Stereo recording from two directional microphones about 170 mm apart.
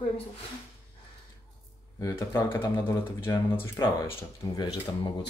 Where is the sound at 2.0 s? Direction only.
15° left (ahead or behind).